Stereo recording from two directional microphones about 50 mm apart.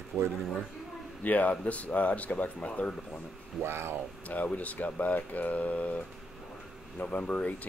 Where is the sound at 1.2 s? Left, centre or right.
Left.